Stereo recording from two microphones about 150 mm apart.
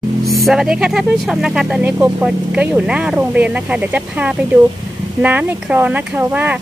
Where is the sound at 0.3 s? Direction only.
Centre (ahead or behind).